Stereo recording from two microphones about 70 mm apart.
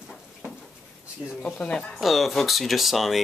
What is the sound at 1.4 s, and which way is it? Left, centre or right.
Speech, centre.